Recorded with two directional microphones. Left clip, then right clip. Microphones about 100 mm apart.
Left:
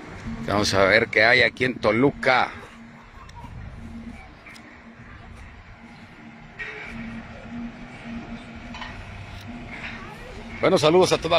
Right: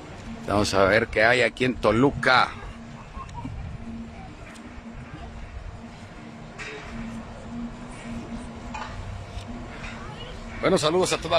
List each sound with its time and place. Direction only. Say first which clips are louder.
0.6 s speech: left 1 dB; 30° right (ahead or behind)
0.8 s a man's voice: left 3 dB; 15° right (ahead or behind)
2.1 s speech: right 1 dB; 5° left (ahead or behind)
10.6 s a man's voice: left 4 dB; centre (ahead or behind)